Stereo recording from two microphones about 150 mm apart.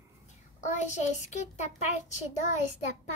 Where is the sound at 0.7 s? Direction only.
50° left (ahead or behind).